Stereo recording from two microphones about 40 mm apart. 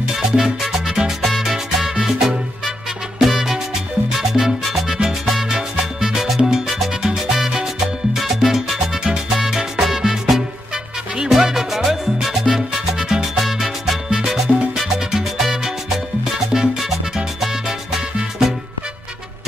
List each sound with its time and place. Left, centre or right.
0.2 s music: centre
2.0 s music: centre
3.2 s salsa music: centre
4.2 s music: centre